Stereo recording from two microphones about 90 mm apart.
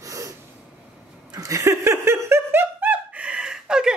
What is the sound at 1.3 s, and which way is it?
Speech, 40° right (ahead or behind).